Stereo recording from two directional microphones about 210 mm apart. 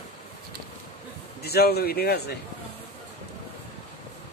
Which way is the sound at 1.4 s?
50° left (ahead or behind).